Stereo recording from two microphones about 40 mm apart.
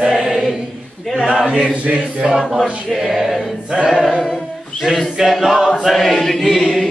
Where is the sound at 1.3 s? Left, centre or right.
Centre.